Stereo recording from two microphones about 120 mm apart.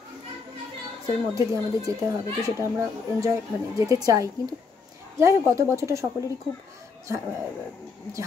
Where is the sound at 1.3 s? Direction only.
25° right (ahead or behind).